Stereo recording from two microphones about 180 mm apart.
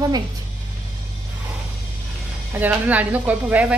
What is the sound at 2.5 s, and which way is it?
A woman's voice, 10° right (ahead or behind).